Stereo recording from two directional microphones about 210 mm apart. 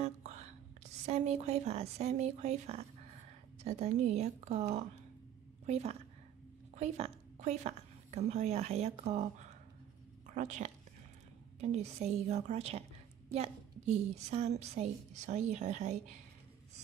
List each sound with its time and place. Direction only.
0.0 s whispering: 30° right (ahead or behind)
1.0 s a woman's voice: 30° right (ahead or behind)